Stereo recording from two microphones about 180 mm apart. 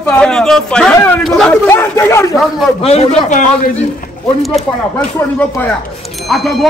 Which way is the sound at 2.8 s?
35° left (ahead or behind).